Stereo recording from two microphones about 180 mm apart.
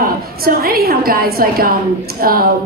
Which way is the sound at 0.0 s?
55° right (ahead or behind).